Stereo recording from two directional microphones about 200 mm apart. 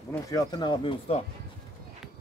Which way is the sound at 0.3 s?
20° left (ahead or behind).